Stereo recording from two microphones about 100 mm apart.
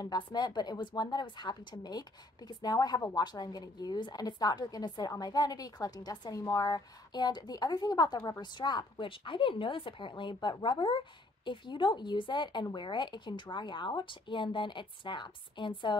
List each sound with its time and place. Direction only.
0.0 s a woman's voice: 45° left (ahead or behind)